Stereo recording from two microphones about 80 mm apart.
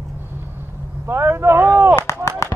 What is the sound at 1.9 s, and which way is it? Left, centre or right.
Artillery fire, left.